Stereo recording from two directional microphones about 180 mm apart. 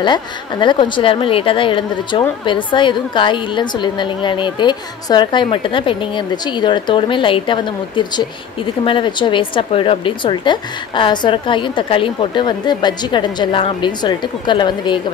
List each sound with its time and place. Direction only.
0.0 s a woman's voice: 25° left (ahead or behind)